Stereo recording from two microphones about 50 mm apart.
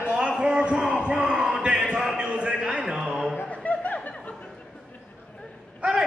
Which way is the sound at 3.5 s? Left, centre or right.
Left.